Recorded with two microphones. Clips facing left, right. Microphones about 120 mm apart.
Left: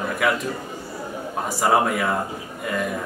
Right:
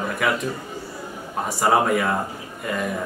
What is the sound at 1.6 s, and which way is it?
Speech, centre (ahead or behind).